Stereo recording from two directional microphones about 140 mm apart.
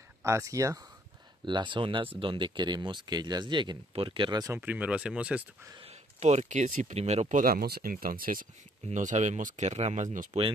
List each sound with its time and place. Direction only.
0.2 s speech: 20° right (ahead or behind)
1.4 s speech: 35° right (ahead or behind)
4.6 s speech: 10° right (ahead or behind)
5.8 s speech: 50° right (ahead or behind); by 8.5 s 85° right
8.8 s speech: 60° right (ahead or behind)